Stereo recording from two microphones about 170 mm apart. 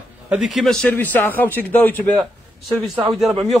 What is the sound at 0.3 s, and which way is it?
A man's voice, centre (ahead or behind).